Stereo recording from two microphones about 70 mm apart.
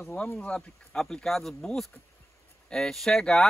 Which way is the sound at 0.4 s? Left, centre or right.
Centre.